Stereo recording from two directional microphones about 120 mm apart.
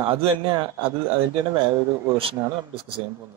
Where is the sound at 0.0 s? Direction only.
45° right (ahead or behind).